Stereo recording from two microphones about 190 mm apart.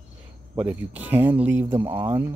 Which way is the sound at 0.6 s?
10° right (ahead or behind).